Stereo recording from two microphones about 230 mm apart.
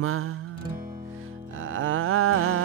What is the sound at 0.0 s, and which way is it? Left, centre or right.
Music, right.